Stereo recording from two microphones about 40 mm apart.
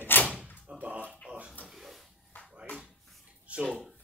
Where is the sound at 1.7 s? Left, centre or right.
Centre.